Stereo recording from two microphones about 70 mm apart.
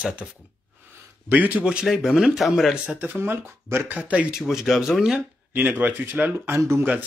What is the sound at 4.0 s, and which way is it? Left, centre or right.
Speech, centre.